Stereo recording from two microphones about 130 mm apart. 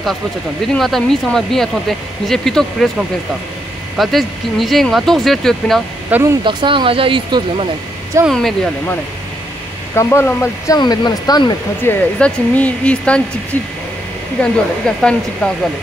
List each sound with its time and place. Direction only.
0.7 s speech: centre (ahead or behind)
3.9 s speech: centre (ahead or behind)
6.0 s speech: 15° right (ahead or behind)
6.4 s speech: 40° right (ahead or behind)
8.3 s speech: centre (ahead or behind)
9.9 s speech: 20° left (ahead or behind)
10.8 s speech: 30° left (ahead or behind)
11.8 s speech: 15° left (ahead or behind)
14.4 s speech: 5° left (ahead or behind)